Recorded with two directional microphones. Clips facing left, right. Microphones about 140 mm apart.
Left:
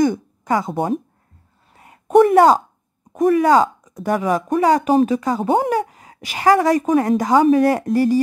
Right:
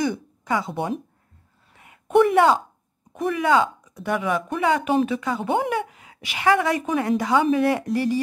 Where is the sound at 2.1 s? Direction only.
40° left (ahead or behind).